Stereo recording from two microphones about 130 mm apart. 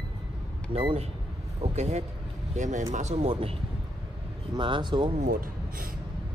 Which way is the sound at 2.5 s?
70° right (ahead or behind).